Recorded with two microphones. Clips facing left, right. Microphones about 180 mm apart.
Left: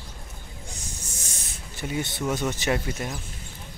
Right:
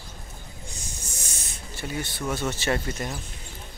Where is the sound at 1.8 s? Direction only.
20° left (ahead or behind).